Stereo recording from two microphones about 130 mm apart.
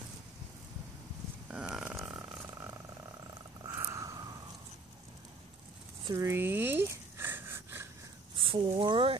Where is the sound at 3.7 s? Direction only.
25° right (ahead or behind).